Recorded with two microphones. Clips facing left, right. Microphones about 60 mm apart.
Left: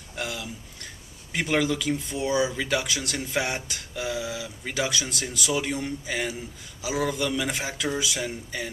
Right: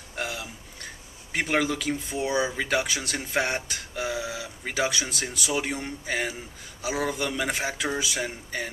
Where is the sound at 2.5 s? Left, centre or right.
Centre.